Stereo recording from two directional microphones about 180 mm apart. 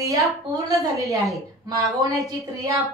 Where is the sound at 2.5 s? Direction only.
20° right (ahead or behind).